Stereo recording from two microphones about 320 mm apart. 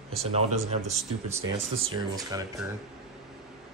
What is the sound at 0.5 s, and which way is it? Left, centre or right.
Speech, centre.